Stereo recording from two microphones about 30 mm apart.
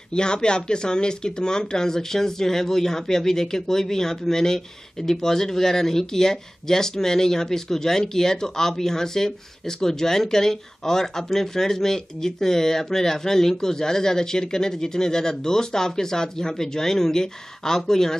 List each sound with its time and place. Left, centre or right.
0.1 s speech: left